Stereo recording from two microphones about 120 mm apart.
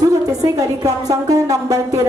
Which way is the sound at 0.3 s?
30° right (ahead or behind).